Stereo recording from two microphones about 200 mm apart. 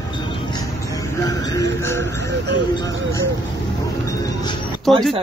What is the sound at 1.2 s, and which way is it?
Speech, 15° left (ahead or behind).